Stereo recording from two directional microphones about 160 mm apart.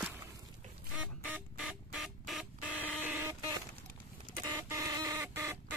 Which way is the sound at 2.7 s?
10° left (ahead or behind).